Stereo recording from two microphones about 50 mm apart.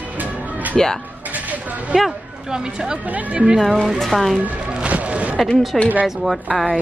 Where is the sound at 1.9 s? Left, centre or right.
Centre.